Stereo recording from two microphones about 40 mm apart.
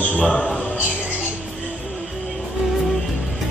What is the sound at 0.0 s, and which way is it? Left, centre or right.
Speech, left.